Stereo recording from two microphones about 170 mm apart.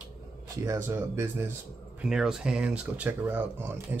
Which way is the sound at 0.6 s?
15° right (ahead or behind).